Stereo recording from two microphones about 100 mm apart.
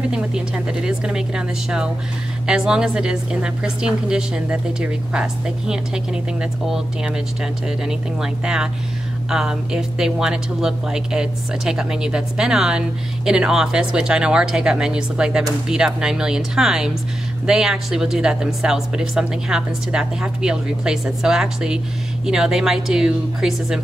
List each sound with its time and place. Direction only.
0.1 s speech: 10° right (ahead or behind)
7.6 s speech: 5° right (ahead or behind)